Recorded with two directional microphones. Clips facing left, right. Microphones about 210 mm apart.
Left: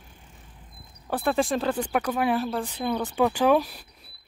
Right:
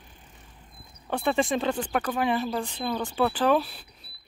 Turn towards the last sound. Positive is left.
turn(degrees=10)  # may be behind; listen again after turning